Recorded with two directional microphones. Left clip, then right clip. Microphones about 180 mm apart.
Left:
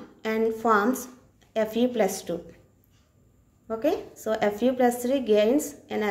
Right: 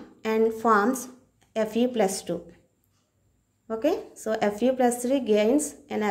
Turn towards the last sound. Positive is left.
turn(degrees=-40)  # may be behind; listen again after turning